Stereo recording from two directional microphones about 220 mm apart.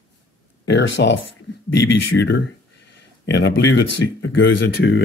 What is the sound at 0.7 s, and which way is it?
Speech, 55° left (ahead or behind).